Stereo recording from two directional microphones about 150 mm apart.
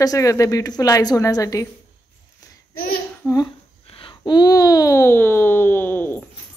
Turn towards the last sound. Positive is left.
turn(degrees=15)  # may be behind; listen again after turning